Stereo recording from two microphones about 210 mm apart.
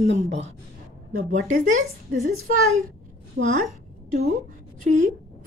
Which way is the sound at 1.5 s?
35° right (ahead or behind).